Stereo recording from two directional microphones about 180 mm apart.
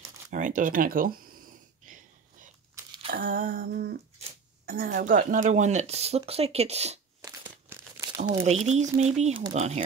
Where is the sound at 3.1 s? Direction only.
50° right (ahead or behind).